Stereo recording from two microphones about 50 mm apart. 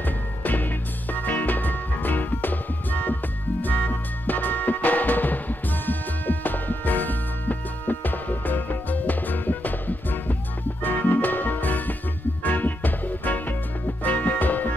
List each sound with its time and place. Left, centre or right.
0.0 s music: left